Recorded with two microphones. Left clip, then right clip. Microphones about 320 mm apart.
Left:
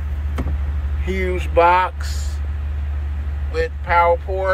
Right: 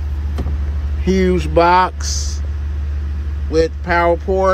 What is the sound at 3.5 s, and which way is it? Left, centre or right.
Speech, right.